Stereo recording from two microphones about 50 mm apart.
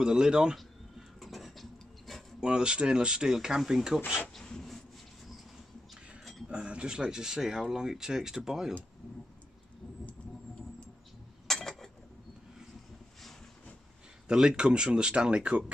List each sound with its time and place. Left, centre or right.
0.0 s speech: centre
1.2 s a sound: centre
2.4 s speech: centre
4.4 s rub: centre
6.5 s speech: centre
11.4 s a sound: centre
14.2 s speech: centre